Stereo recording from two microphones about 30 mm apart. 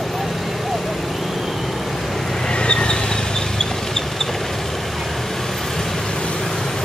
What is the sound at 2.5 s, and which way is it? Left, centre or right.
Vehicle, left.